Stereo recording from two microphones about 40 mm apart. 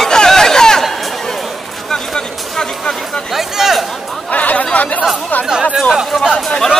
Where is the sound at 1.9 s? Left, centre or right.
Centre.